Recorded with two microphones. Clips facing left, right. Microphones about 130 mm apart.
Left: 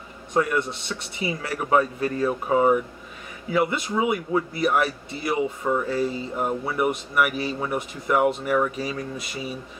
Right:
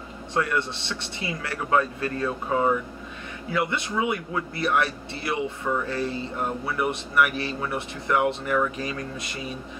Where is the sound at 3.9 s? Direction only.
20° left (ahead or behind).